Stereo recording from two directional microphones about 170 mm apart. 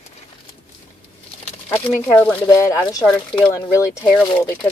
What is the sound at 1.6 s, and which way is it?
Speech, 10° left (ahead or behind).